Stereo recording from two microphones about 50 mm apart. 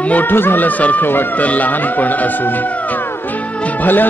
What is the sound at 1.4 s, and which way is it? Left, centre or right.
A man's voice, left.